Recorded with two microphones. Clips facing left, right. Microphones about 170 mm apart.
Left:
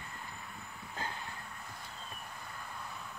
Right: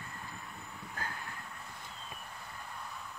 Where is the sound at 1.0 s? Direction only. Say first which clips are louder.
Left 1 dB; 25° left (ahead or behind).